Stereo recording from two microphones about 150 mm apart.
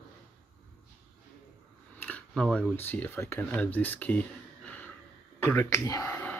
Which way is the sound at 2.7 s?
15° left (ahead or behind).